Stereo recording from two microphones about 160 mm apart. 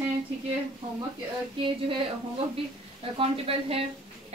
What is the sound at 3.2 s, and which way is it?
Speech, 35° right (ahead or behind).